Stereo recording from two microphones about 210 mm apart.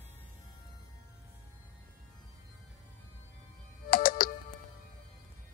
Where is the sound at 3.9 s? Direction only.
40° left (ahead or behind).